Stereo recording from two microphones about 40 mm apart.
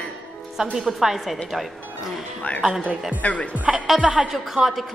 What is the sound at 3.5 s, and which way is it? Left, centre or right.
Speech, right.